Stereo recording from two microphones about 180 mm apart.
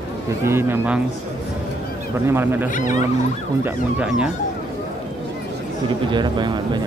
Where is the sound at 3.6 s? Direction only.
5° right (ahead or behind).